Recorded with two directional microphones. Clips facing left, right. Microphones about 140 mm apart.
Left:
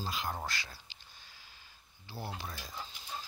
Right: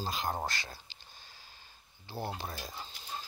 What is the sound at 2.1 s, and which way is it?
Speech, 25° right (ahead or behind).